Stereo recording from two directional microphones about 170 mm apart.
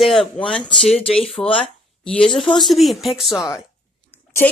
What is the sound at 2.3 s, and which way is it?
Speech, 25° left (ahead or behind).